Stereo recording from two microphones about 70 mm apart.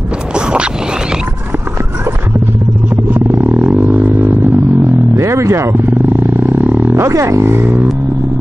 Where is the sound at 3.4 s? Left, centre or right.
Right.